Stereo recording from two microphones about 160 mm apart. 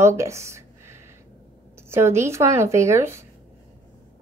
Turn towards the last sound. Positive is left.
turn(degrees=-15)  # may be behind; listen again after turning